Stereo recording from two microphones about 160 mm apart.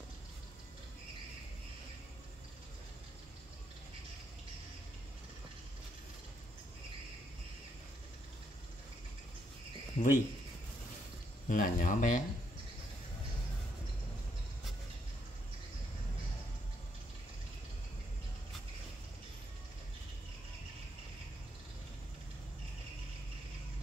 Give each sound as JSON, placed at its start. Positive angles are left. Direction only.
{"t": 9.9, "sound": "speech", "side_deg": 50}
{"t": 11.4, "sound": "speech", "side_deg": 55}